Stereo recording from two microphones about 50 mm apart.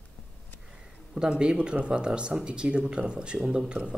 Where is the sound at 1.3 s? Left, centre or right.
Centre.